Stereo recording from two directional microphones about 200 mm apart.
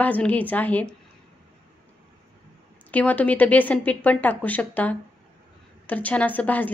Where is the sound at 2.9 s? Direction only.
5° left (ahead or behind).